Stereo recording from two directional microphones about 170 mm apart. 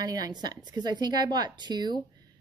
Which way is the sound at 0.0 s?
20° right (ahead or behind).